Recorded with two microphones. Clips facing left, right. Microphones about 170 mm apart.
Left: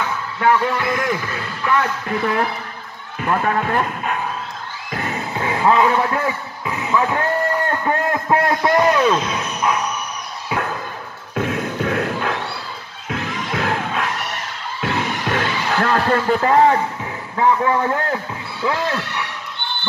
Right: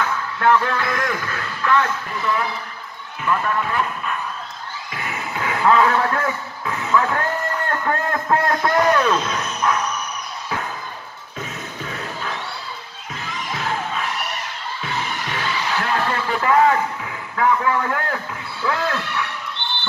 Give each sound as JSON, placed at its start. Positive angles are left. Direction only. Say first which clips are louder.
{"t": 0.4, "sound": "a man's voice", "louder": "left 1 dB", "side_deg": 10}
{"t": 3.2, "sound": "speech", "louder": "left 2 dB", "side_deg": 55}
{"t": 4.9, "sound": "a sound", "louder": "left 4 dB", "side_deg": 35}
{"t": 7.8, "sound": "speech", "louder": "left 2 dB", "side_deg": 15}
{"t": 11.3, "sound": "a sound", "louder": "left 10 dB", "side_deg": 65}
{"t": 13.1, "sound": "music", "louder": "left 6 dB", "side_deg": 60}
{"t": 17.4, "sound": "a man's voice", "louder": "left 2 dB", "side_deg": 25}